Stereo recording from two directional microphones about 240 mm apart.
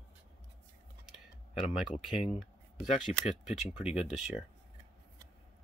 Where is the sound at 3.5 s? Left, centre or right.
Left.